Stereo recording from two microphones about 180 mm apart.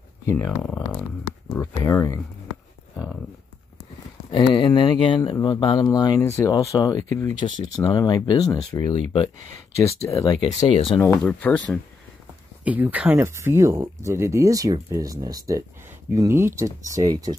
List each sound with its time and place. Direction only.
0.6 s speech: 10° left (ahead or behind)
4.3 s speech: 25° left (ahead or behind)
11.0 s speech: 10° left (ahead or behind)
12.6 s speech: 10° right (ahead or behind)